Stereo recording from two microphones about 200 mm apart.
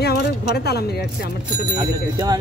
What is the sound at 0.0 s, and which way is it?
Speech, 55° left (ahead or behind).